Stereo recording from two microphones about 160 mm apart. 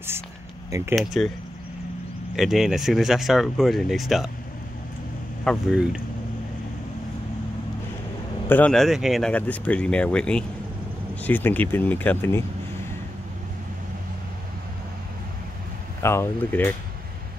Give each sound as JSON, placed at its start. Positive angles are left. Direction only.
{"t": 0.7, "sound": "speech", "side_deg": -20}
{"t": 0.9, "sound": "speech", "side_deg": 0}
{"t": 2.3, "sound": "speech", "side_deg": 0}
{"t": 5.4, "sound": "speech", "side_deg": 0}
{"t": 8.5, "sound": "speech", "side_deg": 10}
{"t": 16.0, "sound": "speech", "side_deg": 15}